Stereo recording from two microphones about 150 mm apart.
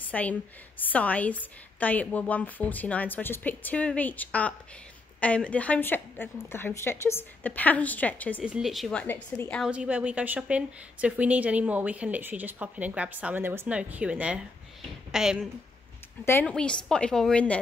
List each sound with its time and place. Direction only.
0.1 s a woman's voice: 10° left (ahead or behind)
8.5 s a woman's voice: 5° right (ahead or behind)
9.0 s a woman's voice: 10° left (ahead or behind)
9.6 s a woman's voice: 10° right (ahead or behind)
16.3 s a woman's voice: 15° left (ahead or behind)
16.5 s a woman's voice: 5° left (ahead or behind)